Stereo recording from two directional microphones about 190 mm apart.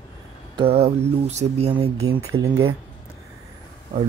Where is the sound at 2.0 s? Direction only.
90° right.